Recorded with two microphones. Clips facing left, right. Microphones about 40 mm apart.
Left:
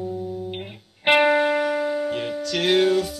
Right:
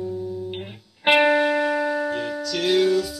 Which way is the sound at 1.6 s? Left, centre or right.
Right.